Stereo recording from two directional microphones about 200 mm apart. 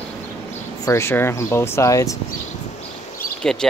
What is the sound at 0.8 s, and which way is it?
Speech, 15° left (ahead or behind).